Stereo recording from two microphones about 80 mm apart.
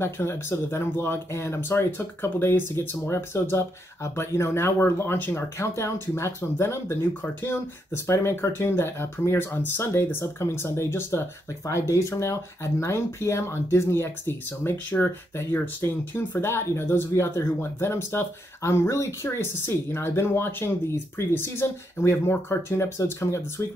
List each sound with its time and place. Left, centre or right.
0.0 s speech: left
5.6 s speech: left